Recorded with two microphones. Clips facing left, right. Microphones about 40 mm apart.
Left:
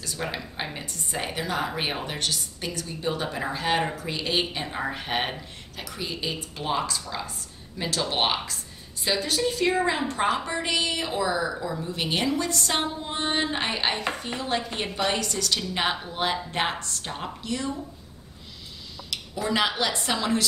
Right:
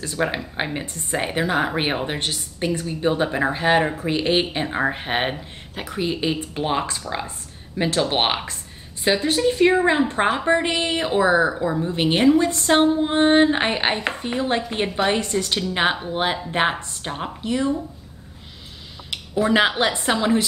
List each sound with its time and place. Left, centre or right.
0.0 s a woman's voice: right
19.0 s speech: right